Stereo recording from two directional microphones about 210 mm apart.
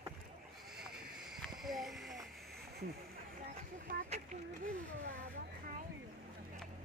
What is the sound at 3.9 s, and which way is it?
Speech, 30° right (ahead or behind).